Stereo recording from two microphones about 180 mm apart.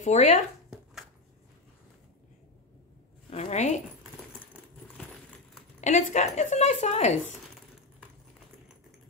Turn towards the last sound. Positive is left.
turn(degrees=40)  # may be behind; listen again after turning